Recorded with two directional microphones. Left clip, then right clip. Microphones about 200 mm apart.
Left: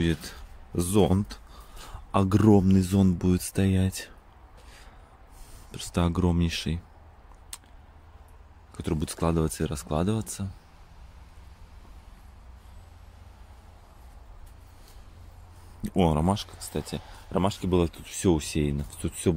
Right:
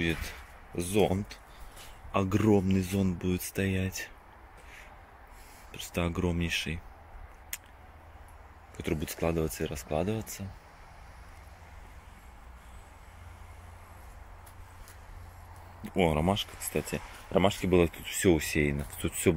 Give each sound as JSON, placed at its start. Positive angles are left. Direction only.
{"t": 0.7, "sound": "speech", "side_deg": 45}
{"t": 2.1, "sound": "speech", "side_deg": 25}
{"t": 3.2, "sound": "speech", "side_deg": 40}
{"t": 3.6, "sound": "speech", "side_deg": 25}
{"t": 5.7, "sound": "speech", "side_deg": 30}
{"t": 8.7, "sound": "speech", "side_deg": 35}
{"t": 15.9, "sound": "speech", "side_deg": 25}